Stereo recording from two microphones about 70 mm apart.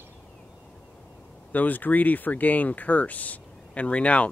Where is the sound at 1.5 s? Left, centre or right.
Left.